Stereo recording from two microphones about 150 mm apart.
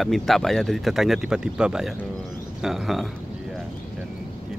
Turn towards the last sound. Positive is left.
turn(degrees=0)  # may be behind; listen again after turning